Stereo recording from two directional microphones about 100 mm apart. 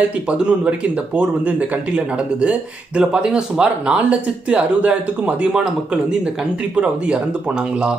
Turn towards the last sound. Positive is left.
turn(degrees=-10)  # may be behind; listen again after turning